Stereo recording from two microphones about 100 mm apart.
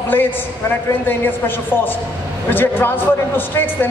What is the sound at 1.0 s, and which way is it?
Speech, 20° left (ahead or behind).